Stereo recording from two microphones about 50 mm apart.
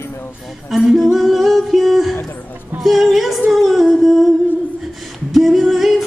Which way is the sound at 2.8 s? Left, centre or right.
Centre.